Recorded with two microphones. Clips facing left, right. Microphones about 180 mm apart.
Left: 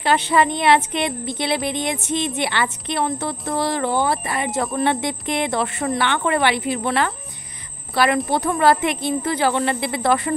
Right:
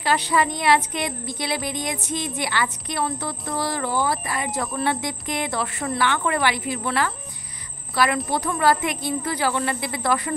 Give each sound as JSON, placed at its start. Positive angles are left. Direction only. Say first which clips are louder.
{"t": 0.0, "sound": "speech", "louder": "left 4 dB", "side_deg": 25}
{"t": 8.5, "sound": "speech", "louder": "left 3 dB", "side_deg": 25}